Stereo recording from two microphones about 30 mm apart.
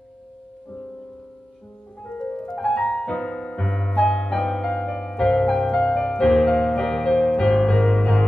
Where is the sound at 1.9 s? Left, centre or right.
Left.